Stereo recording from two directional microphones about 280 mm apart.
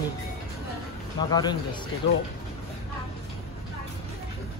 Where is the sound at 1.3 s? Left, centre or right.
Centre.